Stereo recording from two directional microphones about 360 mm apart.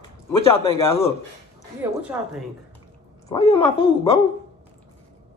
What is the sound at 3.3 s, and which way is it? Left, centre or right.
Speech, centre.